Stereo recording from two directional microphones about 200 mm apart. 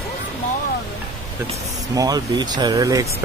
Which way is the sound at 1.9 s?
20° right (ahead or behind).